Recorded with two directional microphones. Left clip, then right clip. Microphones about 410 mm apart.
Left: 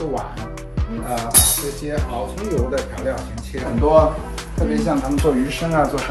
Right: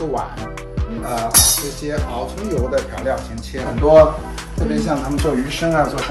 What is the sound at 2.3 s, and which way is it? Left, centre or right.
Speech, centre.